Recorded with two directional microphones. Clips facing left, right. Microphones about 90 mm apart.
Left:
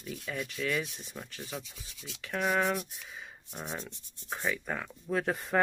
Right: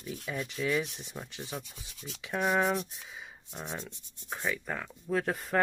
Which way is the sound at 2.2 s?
10° right (ahead or behind).